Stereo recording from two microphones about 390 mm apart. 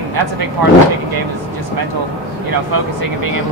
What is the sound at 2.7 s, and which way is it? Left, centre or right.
Speech, right.